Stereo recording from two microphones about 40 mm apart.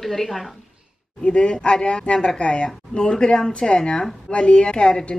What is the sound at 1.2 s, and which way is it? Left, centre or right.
A woman's voice, left.